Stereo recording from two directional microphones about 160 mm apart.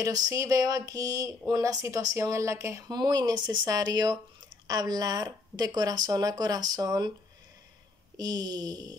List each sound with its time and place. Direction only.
0.0 s speech: 20° right (ahead or behind)
8.2 s speech: 25° right (ahead or behind)